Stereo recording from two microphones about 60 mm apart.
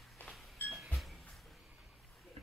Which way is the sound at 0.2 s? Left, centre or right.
Left.